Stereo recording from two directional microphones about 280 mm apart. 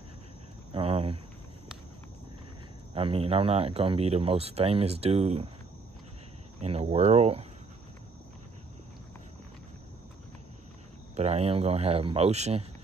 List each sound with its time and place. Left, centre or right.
0.7 s cricket: right
2.9 s speech: centre
6.6 s speech: right
11.1 s speech: right